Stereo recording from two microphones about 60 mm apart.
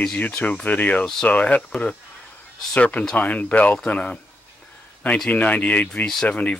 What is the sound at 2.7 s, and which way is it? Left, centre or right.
Speech, left.